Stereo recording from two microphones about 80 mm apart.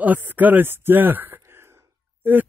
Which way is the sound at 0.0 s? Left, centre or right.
Right.